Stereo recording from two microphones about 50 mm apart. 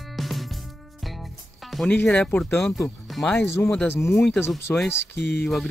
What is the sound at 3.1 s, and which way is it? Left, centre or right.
Music, centre.